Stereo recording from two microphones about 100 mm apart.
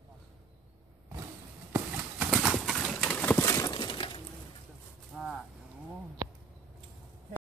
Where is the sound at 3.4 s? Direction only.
35° left (ahead or behind).